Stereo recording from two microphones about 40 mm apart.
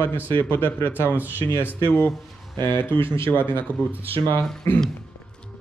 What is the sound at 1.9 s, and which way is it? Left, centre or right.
Speech, left.